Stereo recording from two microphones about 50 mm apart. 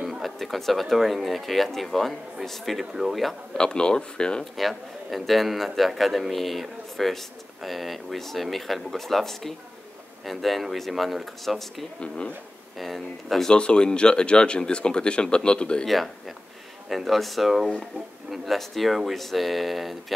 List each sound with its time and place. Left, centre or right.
0.0 s a sound: centre
0.4 s a man's voice: centre
3.5 s speech: centre
4.6 s a man's voice: centre
13.5 s speech: centre
15.9 s a man's voice: centre